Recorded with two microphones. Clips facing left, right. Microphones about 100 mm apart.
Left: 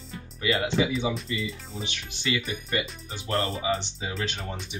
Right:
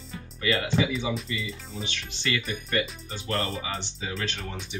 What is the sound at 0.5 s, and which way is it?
Speech, 25° left (ahead or behind).